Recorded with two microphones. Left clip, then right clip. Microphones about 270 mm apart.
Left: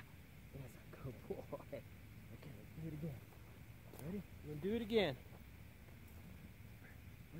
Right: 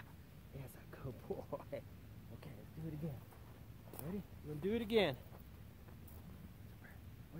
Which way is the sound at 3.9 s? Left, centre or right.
Centre.